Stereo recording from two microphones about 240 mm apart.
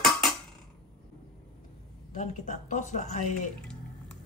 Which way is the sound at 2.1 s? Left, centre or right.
Left.